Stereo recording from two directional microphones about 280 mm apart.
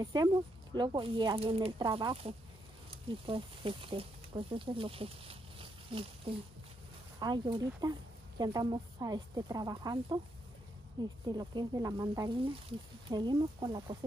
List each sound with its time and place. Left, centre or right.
0.0 s speech: centre